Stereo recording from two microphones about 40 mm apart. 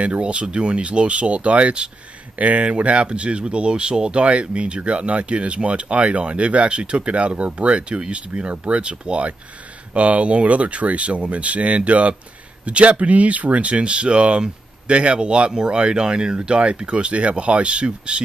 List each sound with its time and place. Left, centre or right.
0.0 s speech: right